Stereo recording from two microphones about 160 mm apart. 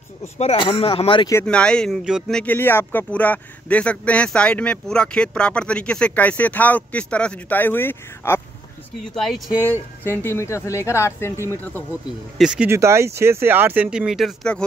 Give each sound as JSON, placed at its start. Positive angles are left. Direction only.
{"t": 0.4, "sound": "a man's voice", "side_deg": 35}
{"t": 1.4, "sound": "speech", "side_deg": 5}
{"t": 2.4, "sound": "a man's voice", "side_deg": 15}
{"t": 9.1, "sound": "speech", "side_deg": 5}
{"t": 9.6, "sound": "a man's voice", "side_deg": 15}
{"t": 12.4, "sound": "speech", "side_deg": -5}
{"t": 12.7, "sound": "speech", "side_deg": -15}